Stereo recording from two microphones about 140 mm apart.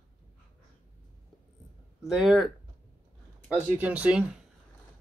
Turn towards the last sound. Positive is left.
turn(degrees=-10)  # may be behind; listen again after turning